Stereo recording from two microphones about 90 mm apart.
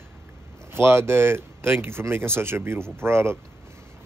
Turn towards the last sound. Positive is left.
turn(degrees=-30)  # may be behind; listen again after turning